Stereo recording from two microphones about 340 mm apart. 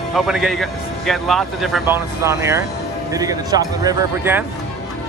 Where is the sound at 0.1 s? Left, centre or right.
Centre.